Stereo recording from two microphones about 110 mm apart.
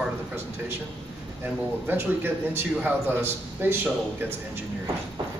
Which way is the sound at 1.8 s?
20° right (ahead or behind).